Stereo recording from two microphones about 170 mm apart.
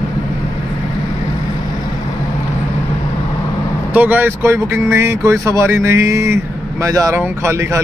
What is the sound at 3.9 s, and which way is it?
Speech, 10° right (ahead or behind).